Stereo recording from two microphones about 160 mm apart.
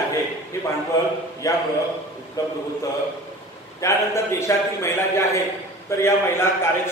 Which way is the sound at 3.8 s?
20° left (ahead or behind).